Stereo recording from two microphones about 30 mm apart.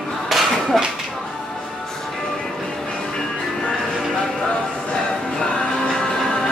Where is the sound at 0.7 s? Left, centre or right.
Centre.